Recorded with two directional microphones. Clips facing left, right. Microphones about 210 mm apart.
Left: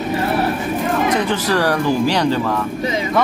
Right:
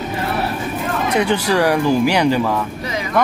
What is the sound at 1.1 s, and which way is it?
Speech, 10° right (ahead or behind).